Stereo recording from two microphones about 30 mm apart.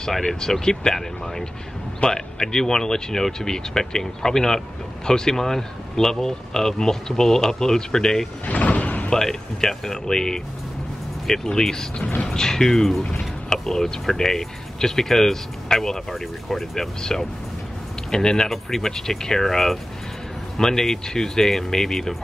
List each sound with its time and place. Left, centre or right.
0.3 s speech: centre
2.0 s speech: left
8.5 s sliding door: left
9.1 s speech: centre
11.4 s speech: left
17.0 s speech: centre
18.5 s speech: centre